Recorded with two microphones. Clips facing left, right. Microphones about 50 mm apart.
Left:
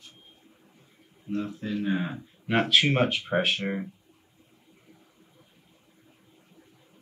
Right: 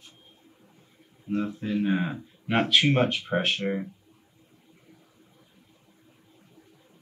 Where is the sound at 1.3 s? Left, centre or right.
Right.